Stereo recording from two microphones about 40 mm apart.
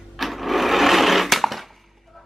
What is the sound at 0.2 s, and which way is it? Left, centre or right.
Sewing machine, centre.